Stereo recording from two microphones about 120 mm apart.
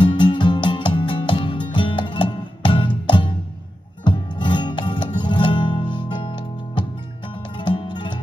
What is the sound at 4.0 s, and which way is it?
Music, 40° left (ahead or behind).